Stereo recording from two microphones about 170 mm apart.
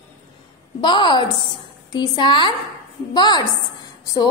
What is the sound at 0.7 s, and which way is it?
A woman's voice, 25° left (ahead or behind).